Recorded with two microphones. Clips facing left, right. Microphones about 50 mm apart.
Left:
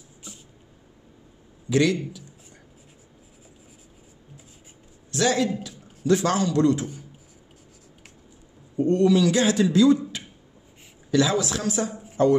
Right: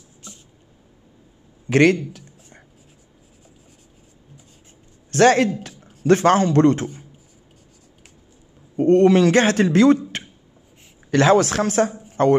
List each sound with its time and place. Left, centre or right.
1.7 s a man's voice: right
5.1 s a man's voice: right
8.7 s a man's voice: right
11.9 s a sound: centre